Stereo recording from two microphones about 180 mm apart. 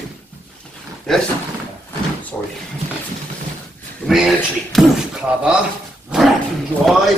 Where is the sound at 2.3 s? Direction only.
5° left (ahead or behind).